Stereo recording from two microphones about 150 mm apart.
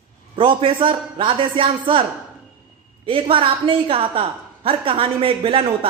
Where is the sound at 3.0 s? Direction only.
35° right (ahead or behind).